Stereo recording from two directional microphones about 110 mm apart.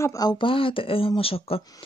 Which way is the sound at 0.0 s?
30° left (ahead or behind).